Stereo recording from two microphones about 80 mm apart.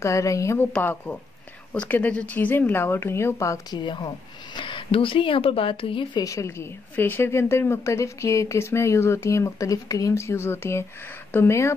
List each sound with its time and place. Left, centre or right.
0.0 s a woman's voice: left
0.8 s speech: centre; by 3.6 s left
3.7 s speech: left
4.6 s speech: left
6.2 s a woman's voice: left